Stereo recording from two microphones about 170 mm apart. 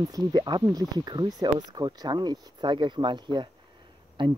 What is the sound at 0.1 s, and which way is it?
Speech, 25° right (ahead or behind).